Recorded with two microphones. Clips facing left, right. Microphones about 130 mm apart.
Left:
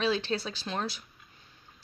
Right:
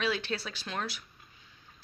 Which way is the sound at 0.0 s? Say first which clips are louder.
Left 3 dB; 30° left (ahead or behind).